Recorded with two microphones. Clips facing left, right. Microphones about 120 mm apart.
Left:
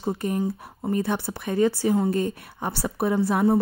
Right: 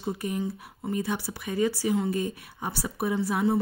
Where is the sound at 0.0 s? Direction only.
50° left (ahead or behind).